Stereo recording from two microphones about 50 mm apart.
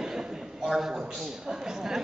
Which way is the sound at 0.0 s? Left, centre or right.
Centre.